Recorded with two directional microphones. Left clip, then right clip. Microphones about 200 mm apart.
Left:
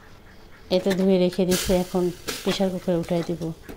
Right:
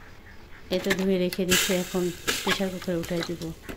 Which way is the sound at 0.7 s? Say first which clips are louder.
Left 4 dB; 15° left (ahead or behind).